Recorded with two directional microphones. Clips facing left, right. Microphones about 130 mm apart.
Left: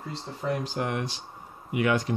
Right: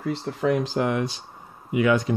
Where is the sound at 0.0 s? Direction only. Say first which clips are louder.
Right 8 dB; 85° right.